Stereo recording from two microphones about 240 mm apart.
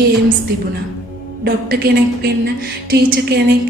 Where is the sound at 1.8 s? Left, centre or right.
Right.